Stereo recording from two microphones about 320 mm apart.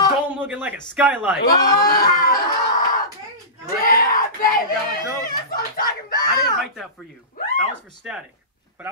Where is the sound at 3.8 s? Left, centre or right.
Left.